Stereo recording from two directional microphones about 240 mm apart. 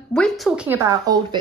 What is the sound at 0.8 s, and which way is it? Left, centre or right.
Speech, centre.